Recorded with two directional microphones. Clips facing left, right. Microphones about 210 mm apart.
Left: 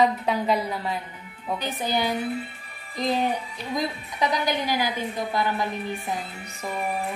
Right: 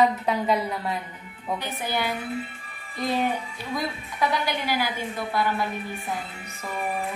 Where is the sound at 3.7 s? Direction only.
15° left (ahead or behind).